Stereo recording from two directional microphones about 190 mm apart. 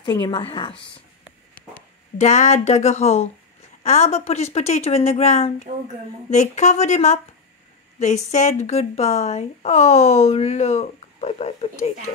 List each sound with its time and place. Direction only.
0.0 s speech: 25° left (ahead or behind)
2.1 s speech: 35° left (ahead or behind)